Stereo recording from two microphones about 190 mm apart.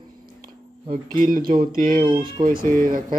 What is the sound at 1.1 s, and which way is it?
Speech, 45° right (ahead or behind).